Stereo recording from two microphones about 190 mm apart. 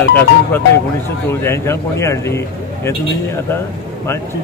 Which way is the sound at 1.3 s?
15° left (ahead or behind).